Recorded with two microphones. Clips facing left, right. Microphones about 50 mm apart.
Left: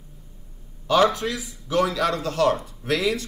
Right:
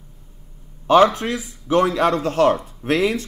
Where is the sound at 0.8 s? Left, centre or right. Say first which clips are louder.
Right 5 dB; right.